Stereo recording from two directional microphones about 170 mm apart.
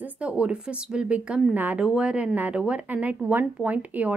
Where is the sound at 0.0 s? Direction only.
5° right (ahead or behind).